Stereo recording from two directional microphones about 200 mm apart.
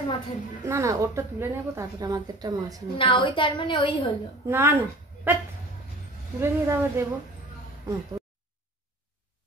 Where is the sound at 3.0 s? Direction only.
25° left (ahead or behind).